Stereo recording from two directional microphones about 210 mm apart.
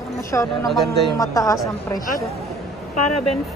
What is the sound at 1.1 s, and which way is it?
Speech, 15° left (ahead or behind).